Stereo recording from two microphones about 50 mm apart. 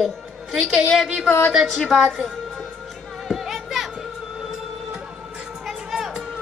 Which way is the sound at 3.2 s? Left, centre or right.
Centre.